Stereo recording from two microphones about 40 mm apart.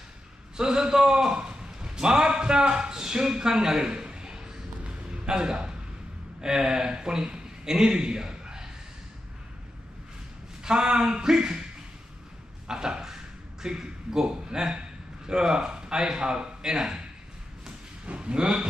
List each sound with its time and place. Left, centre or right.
0.6 s a sound: centre
6.4 s a man's voice: centre
10.6 s speech: centre
12.6 s speech: centre
18.0 s speech: right